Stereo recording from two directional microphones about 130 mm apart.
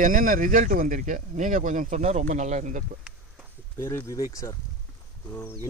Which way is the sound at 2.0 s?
65° right (ahead or behind).